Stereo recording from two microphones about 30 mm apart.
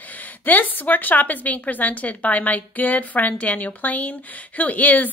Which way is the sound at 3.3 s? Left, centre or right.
Left.